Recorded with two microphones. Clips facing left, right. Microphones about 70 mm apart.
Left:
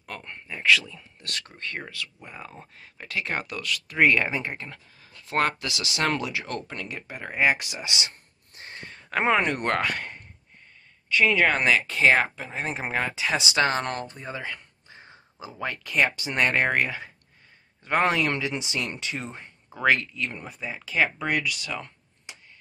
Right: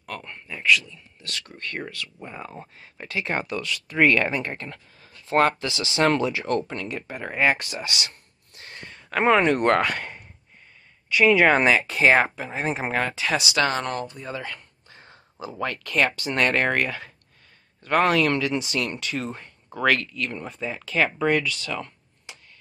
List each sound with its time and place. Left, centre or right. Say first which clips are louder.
0.0 s speech: right 3 dB; centre
1.2 s speech: even; left
2.3 s speech: right 4 dB; centre
4.0 s speech: right 2 dB; centre
8.5 s a sound: even; left
9.5 s speech: right 6 dB; centre
11.1 s speech: right 4 dB; centre
12.9 s speech: even; centre
13.4 s speech: left 1 dB; left
14.2 s a sound: right 1 dB; left
15.6 s speech: right 1 dB; centre